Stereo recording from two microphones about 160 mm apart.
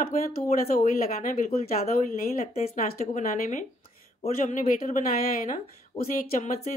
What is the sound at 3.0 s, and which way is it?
A woman's voice, 55° left (ahead or behind).